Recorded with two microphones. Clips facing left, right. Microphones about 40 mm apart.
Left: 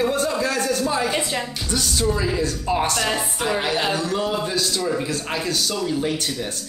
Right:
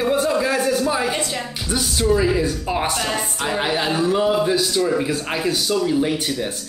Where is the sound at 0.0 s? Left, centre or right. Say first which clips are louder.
Right 2 dB; centre.